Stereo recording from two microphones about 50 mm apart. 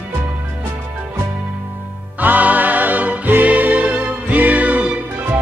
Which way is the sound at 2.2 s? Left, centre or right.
Right.